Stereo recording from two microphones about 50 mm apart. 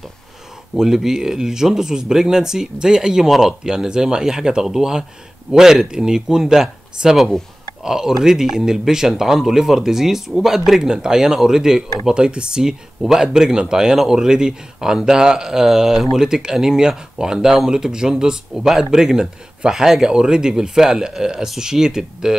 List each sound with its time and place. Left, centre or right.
0.7 s speech: centre